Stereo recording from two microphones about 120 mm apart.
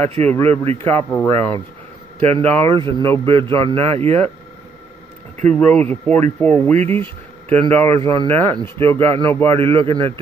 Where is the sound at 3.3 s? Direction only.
45° right (ahead or behind).